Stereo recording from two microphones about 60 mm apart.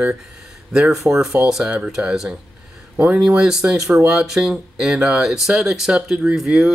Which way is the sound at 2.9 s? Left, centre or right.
Centre.